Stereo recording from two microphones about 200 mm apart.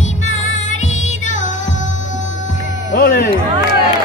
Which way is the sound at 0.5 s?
35° left (ahead or behind).